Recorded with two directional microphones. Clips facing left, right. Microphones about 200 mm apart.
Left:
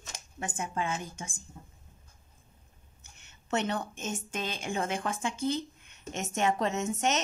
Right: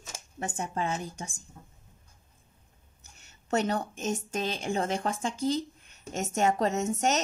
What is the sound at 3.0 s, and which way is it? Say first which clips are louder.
A woman's voice: right 2 dB; 40° right (ahead or behind).